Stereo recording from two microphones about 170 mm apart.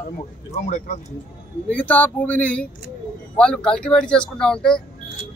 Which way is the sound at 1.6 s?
10° left (ahead or behind).